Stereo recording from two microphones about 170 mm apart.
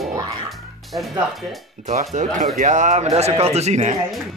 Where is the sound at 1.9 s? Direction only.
45° right (ahead or behind).